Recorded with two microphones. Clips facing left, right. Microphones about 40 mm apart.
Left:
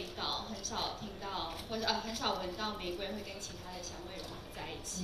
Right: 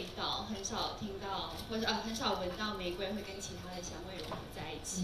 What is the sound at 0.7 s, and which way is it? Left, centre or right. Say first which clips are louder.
Speech: even; left.